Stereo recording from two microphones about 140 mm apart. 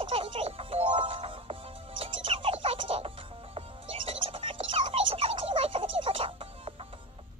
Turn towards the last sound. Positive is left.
turn(degrees=-40)  # may be behind; listen again after turning